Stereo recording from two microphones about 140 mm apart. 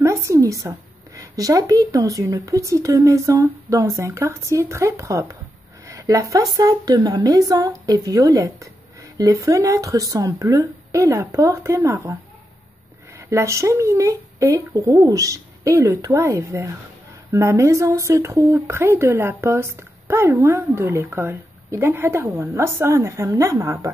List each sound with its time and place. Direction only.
0.0 s speech: 20° right (ahead or behind)
5.9 s a sound: 25° right (ahead or behind)
6.5 s speech: 25° right (ahead or behind)
13.3 s speech: 20° right (ahead or behind)